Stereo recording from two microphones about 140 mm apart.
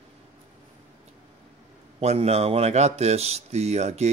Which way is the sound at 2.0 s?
50° right (ahead or behind).